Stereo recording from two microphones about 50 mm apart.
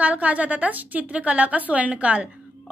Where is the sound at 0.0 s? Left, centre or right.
Right.